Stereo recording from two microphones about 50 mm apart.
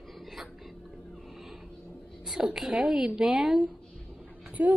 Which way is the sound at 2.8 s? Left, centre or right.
Centre.